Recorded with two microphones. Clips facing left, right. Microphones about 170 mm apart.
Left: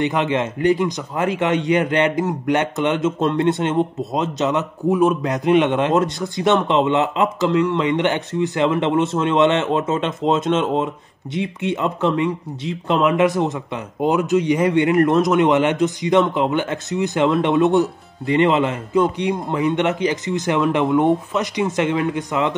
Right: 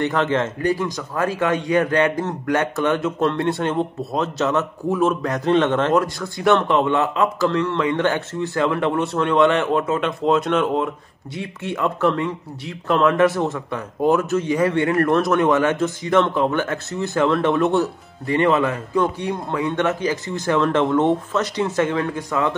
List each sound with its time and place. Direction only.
0.0 s a man's voice: 15° left (ahead or behind)